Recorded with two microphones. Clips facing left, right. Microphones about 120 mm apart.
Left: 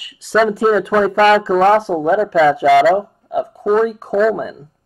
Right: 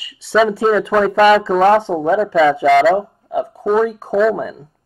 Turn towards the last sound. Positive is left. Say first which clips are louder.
# even
turn(degrees=0)  # may be behind; listen again after turning